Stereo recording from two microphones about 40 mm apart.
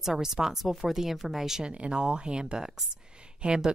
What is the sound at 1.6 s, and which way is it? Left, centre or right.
A woman's voice, right.